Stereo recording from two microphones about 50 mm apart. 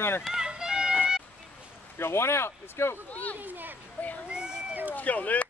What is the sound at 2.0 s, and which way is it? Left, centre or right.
Speech, left.